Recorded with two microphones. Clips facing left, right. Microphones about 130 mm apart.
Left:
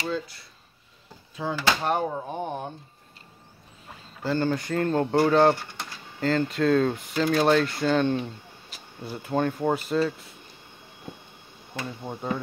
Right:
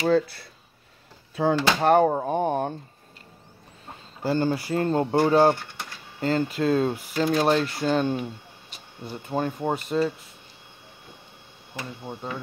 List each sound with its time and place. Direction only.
0.1 s speech: 65° right (ahead or behind)
2.1 s speech: 45° right (ahead or behind)
4.2 s speech: 15° right (ahead or behind)
4.7 s speech: 20° right (ahead or behind)
5.0 s speech: 5° right (ahead or behind)
8.6 s speech: centre (ahead or behind)
11.8 s speech: 5° left (ahead or behind)